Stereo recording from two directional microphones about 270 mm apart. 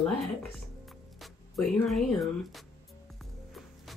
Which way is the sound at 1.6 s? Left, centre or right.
Centre.